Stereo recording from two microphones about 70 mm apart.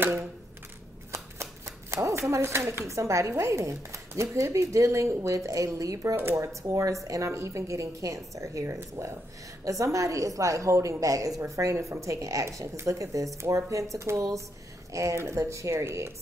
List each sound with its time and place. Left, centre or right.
1.1 s shuffling cards: right
2.9 s speech: right
6.1 s speech: right